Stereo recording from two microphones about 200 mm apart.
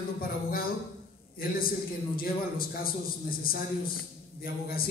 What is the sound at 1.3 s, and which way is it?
A man's voice, 50° left (ahead or behind).